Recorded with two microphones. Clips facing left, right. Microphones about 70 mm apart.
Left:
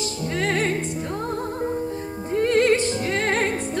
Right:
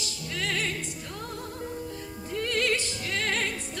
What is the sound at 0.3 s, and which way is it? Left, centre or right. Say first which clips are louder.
Music: left 8 dB; left.